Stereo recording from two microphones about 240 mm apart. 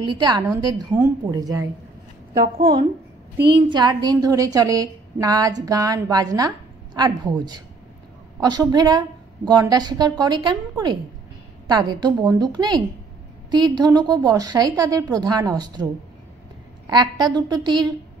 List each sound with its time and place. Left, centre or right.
0.0 s a woman's voice: centre
2.5 s a woman's voice: right
3.3 s a woman's voice: right
3.6 s a woman's voice: centre